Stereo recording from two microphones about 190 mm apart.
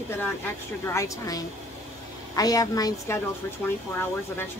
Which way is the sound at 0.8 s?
15° left (ahead or behind).